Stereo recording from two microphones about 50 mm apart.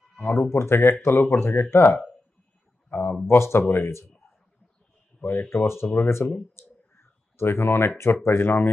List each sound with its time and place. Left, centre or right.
0.2 s speech: left
2.9 s a sound: left
3.3 s a man's voice: left
5.2 s speech: left
6.0 s a man's voice: left
6.5 s clicking: left
8.2 s speech: left